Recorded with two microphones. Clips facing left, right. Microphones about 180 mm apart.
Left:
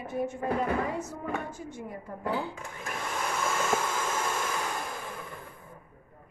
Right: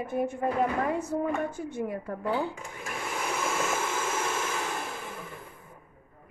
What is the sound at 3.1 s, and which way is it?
Vehicle, 10° right (ahead or behind).